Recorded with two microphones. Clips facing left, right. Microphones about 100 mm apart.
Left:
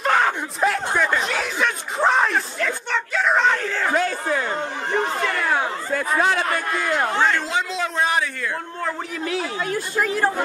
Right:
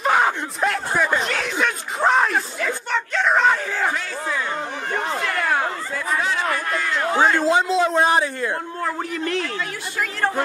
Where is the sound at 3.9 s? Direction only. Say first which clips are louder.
Left 5 dB; 45° left (ahead or behind).